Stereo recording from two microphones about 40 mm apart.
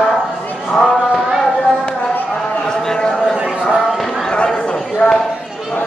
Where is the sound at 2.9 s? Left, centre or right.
Centre.